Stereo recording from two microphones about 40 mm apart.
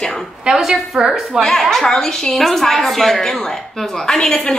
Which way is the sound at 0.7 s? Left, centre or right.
Centre.